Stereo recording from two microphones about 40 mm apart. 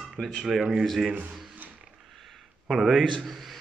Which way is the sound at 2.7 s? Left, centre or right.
Centre.